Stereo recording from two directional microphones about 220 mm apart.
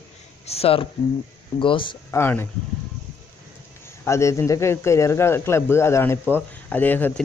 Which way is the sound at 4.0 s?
15° left (ahead or behind).